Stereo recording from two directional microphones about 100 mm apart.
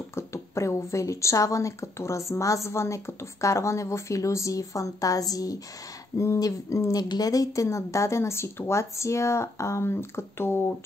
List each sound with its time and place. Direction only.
0.1 s a woman's voice: 30° left (ahead or behind)